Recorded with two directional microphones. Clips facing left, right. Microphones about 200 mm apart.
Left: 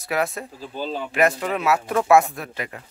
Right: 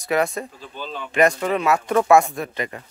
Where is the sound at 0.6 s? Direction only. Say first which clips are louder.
Left 4 dB; 35° left (ahead or behind).